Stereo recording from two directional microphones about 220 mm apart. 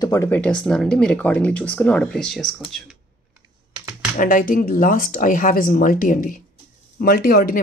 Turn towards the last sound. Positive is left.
turn(degrees=45)  # may be behind; listen again after turning